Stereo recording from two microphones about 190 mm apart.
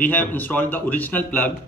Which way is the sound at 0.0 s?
10° left (ahead or behind).